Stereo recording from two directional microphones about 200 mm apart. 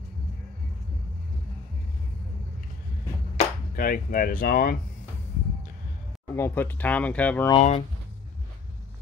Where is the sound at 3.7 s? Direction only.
45° left (ahead or behind).